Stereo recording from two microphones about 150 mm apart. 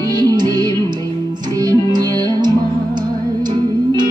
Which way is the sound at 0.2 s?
25° right (ahead or behind).